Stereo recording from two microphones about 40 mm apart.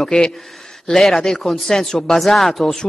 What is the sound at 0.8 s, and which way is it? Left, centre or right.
A woman's voice, centre.